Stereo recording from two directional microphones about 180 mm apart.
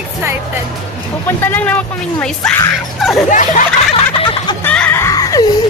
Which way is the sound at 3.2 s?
45° left (ahead or behind).